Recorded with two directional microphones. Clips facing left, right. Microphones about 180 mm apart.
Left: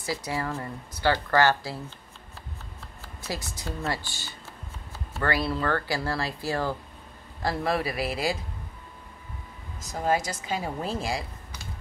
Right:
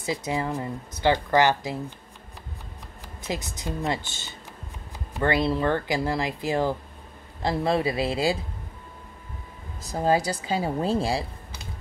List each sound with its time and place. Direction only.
0.0 s speech: 20° right (ahead or behind)
3.2 s speech: 20° right (ahead or behind)
9.8 s speech: 30° right (ahead or behind)